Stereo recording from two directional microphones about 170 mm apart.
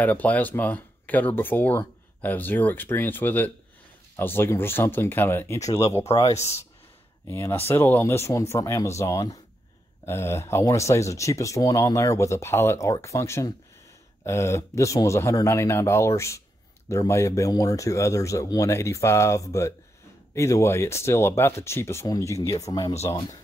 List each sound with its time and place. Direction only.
0.0 s speech: 10° left (ahead or behind)
7.2 s speech: 15° left (ahead or behind)